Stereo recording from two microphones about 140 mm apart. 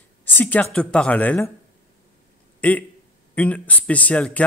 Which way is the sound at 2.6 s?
10° left (ahead or behind).